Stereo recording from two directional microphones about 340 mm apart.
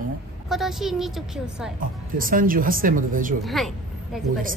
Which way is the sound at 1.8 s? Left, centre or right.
Right.